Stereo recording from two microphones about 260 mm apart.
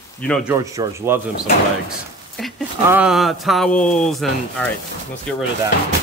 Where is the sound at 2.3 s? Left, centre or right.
Centre.